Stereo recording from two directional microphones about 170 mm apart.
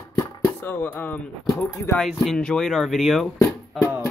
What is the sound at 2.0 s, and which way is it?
Speech, centre (ahead or behind).